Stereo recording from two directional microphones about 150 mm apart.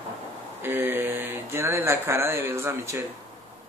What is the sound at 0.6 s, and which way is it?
Speech, 15° right (ahead or behind).